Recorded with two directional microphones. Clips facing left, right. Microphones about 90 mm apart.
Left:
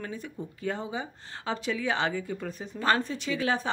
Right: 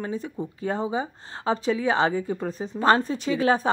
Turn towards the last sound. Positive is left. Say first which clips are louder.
# right 7 dB
turn(degrees=-40)  # may be behind; listen again after turning